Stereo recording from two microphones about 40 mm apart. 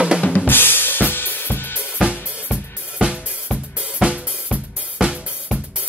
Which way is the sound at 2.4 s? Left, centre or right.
Right.